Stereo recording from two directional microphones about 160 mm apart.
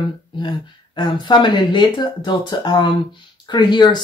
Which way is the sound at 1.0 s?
30° left (ahead or behind).